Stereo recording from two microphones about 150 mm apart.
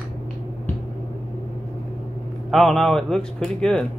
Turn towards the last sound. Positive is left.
turn(degrees=5)  # may be behind; listen again after turning